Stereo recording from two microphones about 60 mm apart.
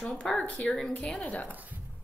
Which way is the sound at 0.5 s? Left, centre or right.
Centre.